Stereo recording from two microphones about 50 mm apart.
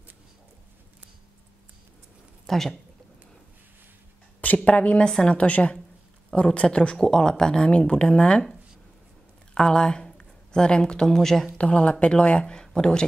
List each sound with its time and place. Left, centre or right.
2.4 s a woman's voice: centre
4.6 s speech: left
9.5 s speech: centre
11.5 s speech: left